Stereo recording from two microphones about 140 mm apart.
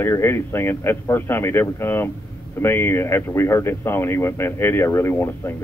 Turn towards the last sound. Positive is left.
turn(degrees=20)  # may be behind; listen again after turning